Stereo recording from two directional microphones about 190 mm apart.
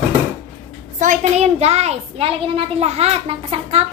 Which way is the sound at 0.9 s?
40° right (ahead or behind).